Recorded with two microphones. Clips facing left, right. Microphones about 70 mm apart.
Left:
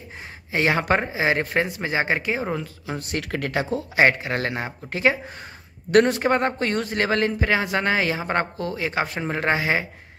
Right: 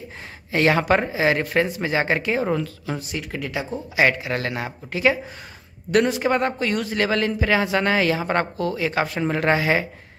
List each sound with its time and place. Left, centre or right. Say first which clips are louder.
0.5 s speech: right 2 dB; left
3.0 s speech: left 2 dB; left
3.9 s speech: even; left
5.9 s speech: left 2 dB; left